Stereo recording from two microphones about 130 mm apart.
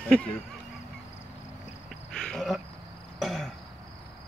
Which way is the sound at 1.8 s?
5° left (ahead or behind).